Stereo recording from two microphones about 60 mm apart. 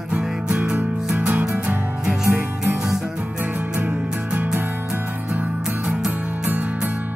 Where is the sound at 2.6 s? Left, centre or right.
Centre.